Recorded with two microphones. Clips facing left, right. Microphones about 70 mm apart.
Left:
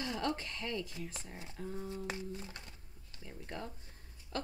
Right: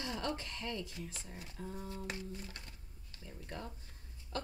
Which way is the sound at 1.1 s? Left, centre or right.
Left.